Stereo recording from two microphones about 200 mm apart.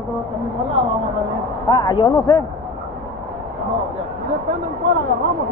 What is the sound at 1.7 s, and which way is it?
Speech, 20° left (ahead or behind).